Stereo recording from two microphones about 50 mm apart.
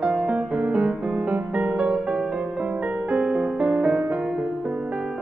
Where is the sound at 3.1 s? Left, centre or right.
Right.